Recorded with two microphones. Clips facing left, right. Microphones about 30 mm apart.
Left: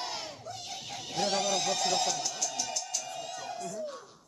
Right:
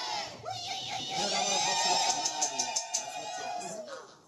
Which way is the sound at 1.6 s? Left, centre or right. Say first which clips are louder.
Right 1 dB; right.